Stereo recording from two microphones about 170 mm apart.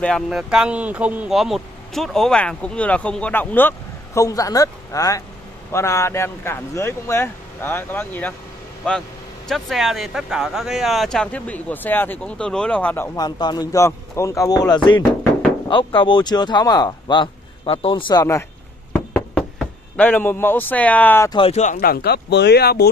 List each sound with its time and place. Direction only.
0.0 s speech: centre (ahead or behind); by 18.2 s 30° left (ahead or behind)
19.3 s speech: 5° left (ahead or behind)
21.3 s speech: 35° left (ahead or behind)
21.8 s speech: 70° left (ahead or behind)